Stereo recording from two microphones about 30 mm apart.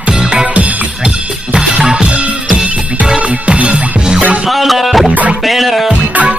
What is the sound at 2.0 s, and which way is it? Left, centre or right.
Music, right.